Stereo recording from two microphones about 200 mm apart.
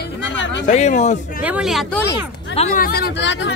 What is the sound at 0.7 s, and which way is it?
Speech, 35° left (ahead or behind).